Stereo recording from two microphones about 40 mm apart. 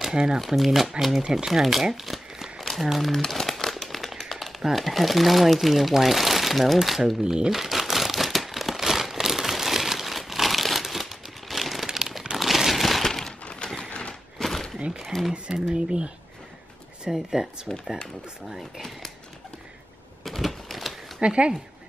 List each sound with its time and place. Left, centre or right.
0.1 s speech: centre
0.4 s speech: centre
2.6 s crumpling: centre
4.2 s speech: centre
7.5 s crumpling: centre
13.4 s a sound: left
14.4 s a sound: centre
14.9 s a sound: centre
15.3 s speech: right
17.1 s speech: centre
18.6 s a sound: centre
20.2 s typewriter: centre
21.2 s speech: right